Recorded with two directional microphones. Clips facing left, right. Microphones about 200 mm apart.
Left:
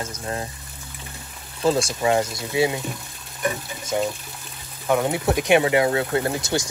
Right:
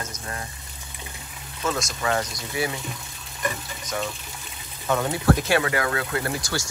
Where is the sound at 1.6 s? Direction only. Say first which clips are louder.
Left 7 dB; 30° left (ahead or behind).